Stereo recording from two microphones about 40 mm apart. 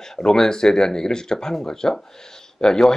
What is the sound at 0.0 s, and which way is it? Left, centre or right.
Speech, centre.